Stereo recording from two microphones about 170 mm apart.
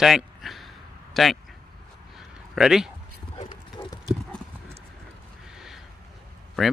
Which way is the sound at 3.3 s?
30° left (ahead or behind).